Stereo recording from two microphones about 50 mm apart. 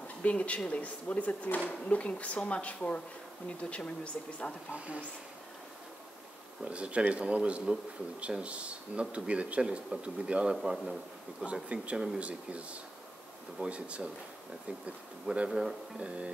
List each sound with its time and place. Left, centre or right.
0.2 s speech: left
4.7 s speech: right
6.6 s a man's voice: right
11.4 s speech: right